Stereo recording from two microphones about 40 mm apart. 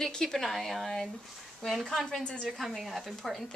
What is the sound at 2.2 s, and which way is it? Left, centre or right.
Speech, left.